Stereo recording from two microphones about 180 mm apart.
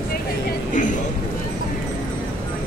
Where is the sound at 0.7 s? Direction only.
45° left (ahead or behind).